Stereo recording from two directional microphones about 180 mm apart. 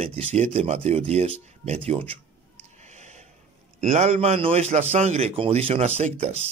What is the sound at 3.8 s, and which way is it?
A man's voice, 40° right (ahead or behind).